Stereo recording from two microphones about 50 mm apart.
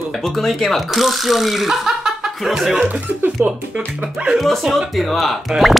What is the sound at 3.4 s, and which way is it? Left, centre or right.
Speech, right.